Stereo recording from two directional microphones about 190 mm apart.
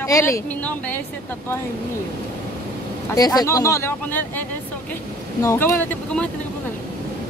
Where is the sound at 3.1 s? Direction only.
20° left (ahead or behind).